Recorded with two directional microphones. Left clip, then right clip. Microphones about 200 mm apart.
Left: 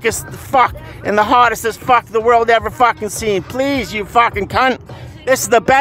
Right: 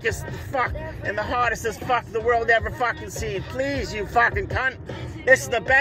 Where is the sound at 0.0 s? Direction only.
30° left (ahead or behind).